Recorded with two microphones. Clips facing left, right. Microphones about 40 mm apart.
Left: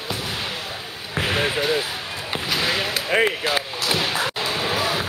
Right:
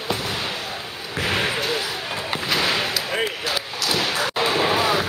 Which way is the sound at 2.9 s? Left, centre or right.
Left.